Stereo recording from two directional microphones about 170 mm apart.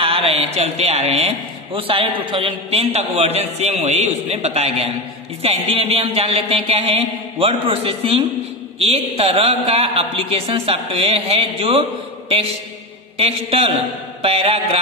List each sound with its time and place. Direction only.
0.0 s a man's voice: 35° right (ahead or behind)
13.5 s a man's voice: 35° right (ahead or behind)